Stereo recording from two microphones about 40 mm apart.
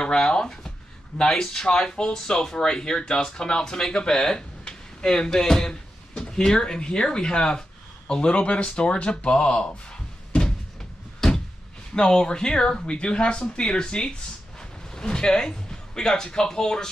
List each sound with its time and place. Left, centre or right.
0.0 s speech: centre
11.1 s door: centre
11.9 s speech: left